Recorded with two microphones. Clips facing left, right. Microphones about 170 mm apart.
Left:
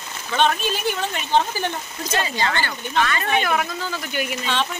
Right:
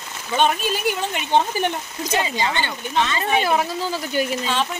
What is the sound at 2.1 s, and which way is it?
Speech, 15° right (ahead or behind).